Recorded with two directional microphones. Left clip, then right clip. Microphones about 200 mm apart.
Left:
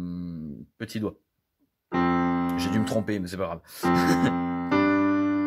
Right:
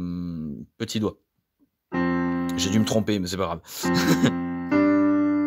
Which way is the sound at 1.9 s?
25° left (ahead or behind).